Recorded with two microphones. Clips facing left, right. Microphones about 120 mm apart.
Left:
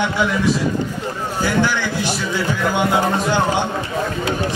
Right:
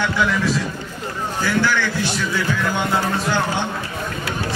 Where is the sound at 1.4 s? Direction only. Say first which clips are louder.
Left 1 dB; 15° left (ahead or behind).